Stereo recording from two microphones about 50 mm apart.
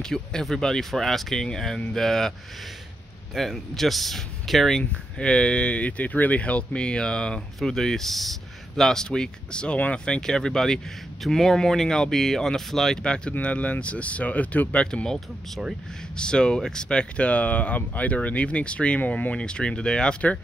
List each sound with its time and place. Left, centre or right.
0.0 s speech: centre
3.3 s speech: centre
5.2 s speech: centre
15.0 s speech: centre
16.2 s speech: centre
19.4 s speech: centre